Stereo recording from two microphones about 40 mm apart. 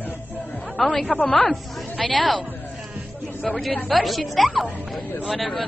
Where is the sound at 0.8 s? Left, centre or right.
Centre.